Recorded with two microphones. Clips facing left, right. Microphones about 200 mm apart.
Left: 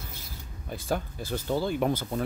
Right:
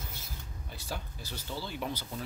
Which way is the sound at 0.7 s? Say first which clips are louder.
Left 11 dB; 50° left (ahead or behind).